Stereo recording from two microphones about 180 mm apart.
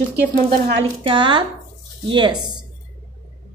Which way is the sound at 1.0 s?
30° right (ahead or behind).